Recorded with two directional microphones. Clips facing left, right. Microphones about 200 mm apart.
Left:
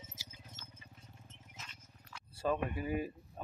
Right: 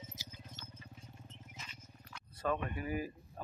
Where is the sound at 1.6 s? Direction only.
Centre (ahead or behind).